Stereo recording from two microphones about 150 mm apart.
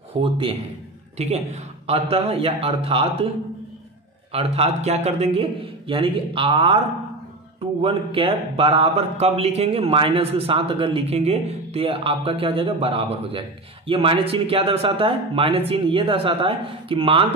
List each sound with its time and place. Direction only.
0.1 s a man's voice: 35° right (ahead or behind)
4.3 s a man's voice: 40° right (ahead or behind)
7.8 s a man's voice: 35° right (ahead or behind)